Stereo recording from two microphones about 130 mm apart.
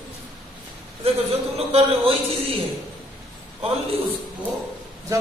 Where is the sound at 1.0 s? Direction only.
50° right (ahead or behind).